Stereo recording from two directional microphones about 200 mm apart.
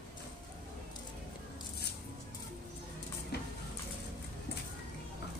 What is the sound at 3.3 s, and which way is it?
Music, 55° left (ahead or behind).